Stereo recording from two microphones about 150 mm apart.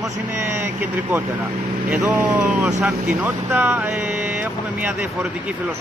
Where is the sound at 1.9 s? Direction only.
10° right (ahead or behind).